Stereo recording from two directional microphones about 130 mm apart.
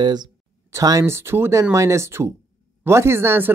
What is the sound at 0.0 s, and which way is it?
Speech, 30° right (ahead or behind).